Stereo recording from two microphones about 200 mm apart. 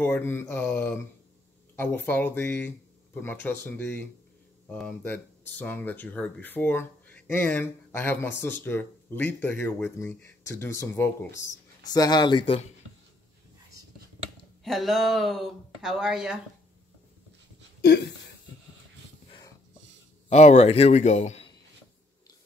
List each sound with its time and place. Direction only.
0.0 s speech: 10° left (ahead or behind)
14.6 s speech: centre (ahead or behind)
17.8 s speech: 60° left (ahead or behind)
20.2 s a man's voice: 35° left (ahead or behind)